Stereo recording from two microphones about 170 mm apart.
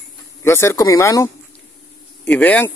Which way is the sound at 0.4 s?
15° left (ahead or behind).